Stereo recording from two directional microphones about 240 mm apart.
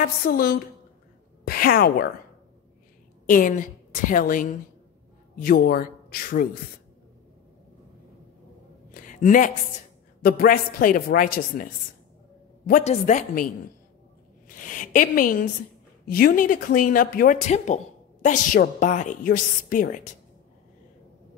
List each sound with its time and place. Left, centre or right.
0.0 s a woman's voice: left
3.3 s a woman's voice: left
8.9 s a sound: left
10.2 s a woman's voice: left
14.5 s a woman's voice: left